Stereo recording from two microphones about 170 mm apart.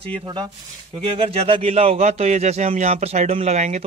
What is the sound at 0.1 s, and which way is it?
Speech, 30° right (ahead or behind).